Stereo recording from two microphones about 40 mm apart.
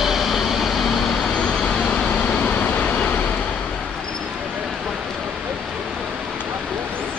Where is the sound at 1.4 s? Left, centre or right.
Centre.